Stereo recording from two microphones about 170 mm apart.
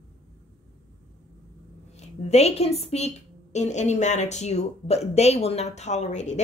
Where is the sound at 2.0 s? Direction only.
40° left (ahead or behind).